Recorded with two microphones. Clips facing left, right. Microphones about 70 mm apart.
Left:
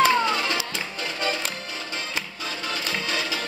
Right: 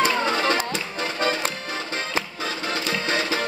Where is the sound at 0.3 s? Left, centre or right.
Right.